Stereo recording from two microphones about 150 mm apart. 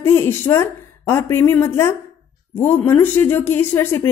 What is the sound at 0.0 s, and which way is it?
A woman's voice, 15° left (ahead or behind).